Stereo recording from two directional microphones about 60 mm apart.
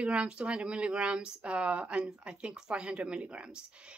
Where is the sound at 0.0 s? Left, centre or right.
Centre.